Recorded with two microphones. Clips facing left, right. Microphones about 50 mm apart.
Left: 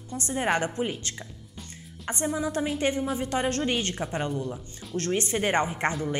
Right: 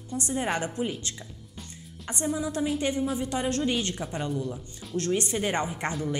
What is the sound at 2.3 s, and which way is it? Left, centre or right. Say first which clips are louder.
A woman's voice: right 1 dB; left.